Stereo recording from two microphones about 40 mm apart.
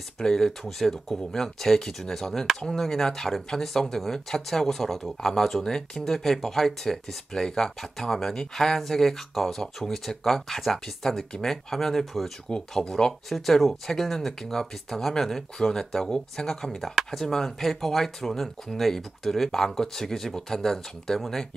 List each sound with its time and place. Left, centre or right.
0.2 s speech: centre
12.5 s speech: left
13.3 s speech: centre